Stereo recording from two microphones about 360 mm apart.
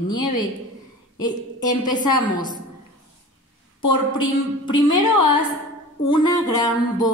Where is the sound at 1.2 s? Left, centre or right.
Centre.